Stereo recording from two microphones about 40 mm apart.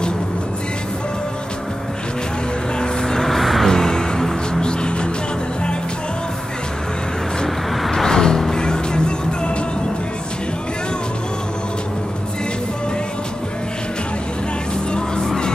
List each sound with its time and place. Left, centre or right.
2.8 s vehicle: centre
3.3 s music: centre
3.7 s music: centre
7.4 s vehicle: centre
7.9 s music: centre
14.9 s vehicle: left